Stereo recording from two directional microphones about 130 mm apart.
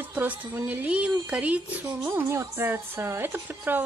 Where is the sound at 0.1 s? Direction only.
15° right (ahead or behind).